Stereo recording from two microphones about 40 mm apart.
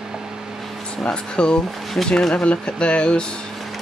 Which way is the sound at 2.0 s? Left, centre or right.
Left.